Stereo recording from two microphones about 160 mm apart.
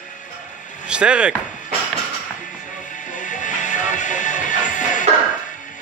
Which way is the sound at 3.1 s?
50° left (ahead or behind).